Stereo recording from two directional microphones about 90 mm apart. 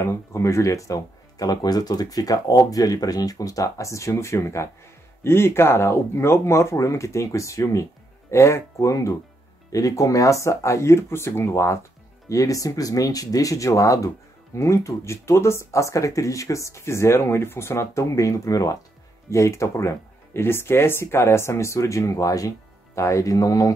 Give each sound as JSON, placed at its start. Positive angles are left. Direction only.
{"t": 0.0, "sound": "speech", "side_deg": 35}